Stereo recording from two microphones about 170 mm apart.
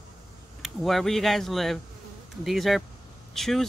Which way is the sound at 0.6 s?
Centre (ahead or behind).